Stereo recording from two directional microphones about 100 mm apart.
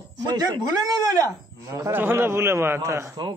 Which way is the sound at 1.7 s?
25° right (ahead or behind).